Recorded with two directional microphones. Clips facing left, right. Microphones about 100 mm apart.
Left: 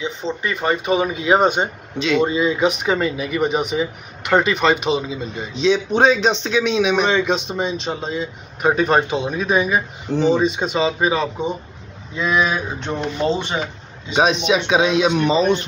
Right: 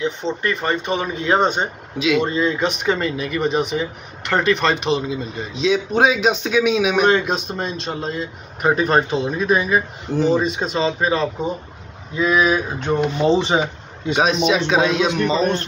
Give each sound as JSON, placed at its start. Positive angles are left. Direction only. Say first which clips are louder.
{"t": 0.0, "sound": "speech", "louder": "right 2 dB", "side_deg": 0}
{"t": 2.0, "sound": "speech", "louder": "even", "side_deg": -5}
{"t": 2.2, "sound": "speech", "louder": "left 2 dB", "side_deg": 5}
{"t": 13.3, "sound": "speech", "louder": "right 5 dB", "side_deg": -15}
{"t": 14.1, "sound": "speech", "louder": "left 1 dB", "side_deg": 0}